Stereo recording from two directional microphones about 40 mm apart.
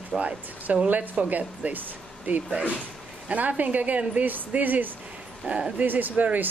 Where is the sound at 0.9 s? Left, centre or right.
Right.